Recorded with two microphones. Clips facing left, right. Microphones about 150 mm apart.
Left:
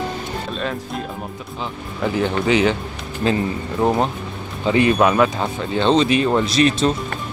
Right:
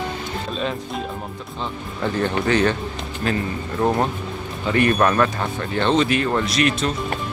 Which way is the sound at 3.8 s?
20° left (ahead or behind).